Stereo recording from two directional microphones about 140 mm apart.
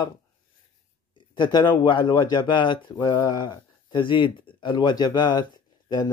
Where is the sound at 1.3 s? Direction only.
30° left (ahead or behind).